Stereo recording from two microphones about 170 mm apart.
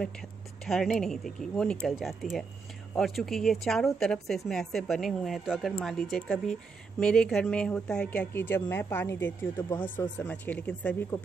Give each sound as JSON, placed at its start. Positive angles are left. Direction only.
{"t": 0.7, "sound": "a woman's voice", "side_deg": 0}
{"t": 10.1, "sound": "a woman's voice", "side_deg": 10}